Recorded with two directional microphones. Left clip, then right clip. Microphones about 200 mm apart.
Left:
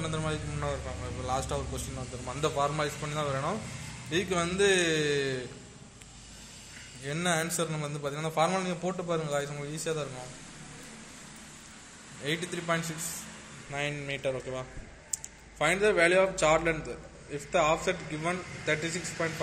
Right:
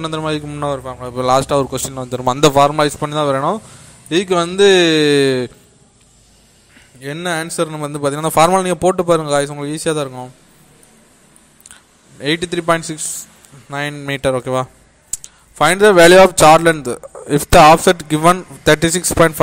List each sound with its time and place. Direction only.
0.0 s a man's voice: 45° right (ahead or behind)
7.0 s a man's voice: 40° right (ahead or behind)
12.2 s a man's voice: 45° right (ahead or behind)